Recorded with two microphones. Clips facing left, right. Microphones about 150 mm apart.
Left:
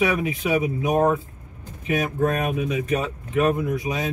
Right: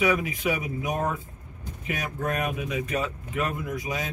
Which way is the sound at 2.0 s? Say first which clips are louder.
Left 7 dB; 25° left (ahead or behind).